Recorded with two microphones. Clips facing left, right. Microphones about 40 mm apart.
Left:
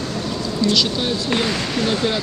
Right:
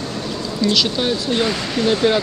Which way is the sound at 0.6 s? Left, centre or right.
Centre.